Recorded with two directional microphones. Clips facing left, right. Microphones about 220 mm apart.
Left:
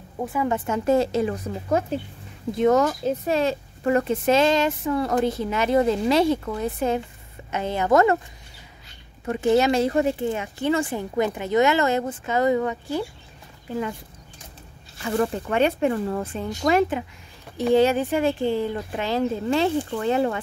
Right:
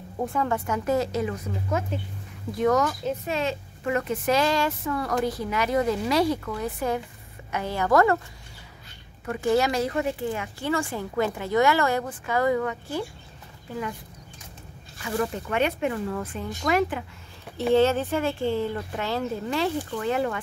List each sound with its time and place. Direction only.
0.2 s a woman's voice: 5° left (ahead or behind)
0.5 s speech: 25° left (ahead or behind)
9.2 s speech: 25° left (ahead or behind)
15.0 s speech: 30° left (ahead or behind)
17.7 s speech: 15° left (ahead or behind)